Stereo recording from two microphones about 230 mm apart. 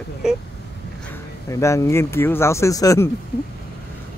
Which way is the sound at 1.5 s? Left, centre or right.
Centre.